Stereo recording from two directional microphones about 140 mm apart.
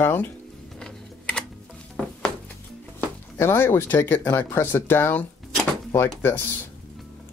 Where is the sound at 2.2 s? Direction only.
15° left (ahead or behind).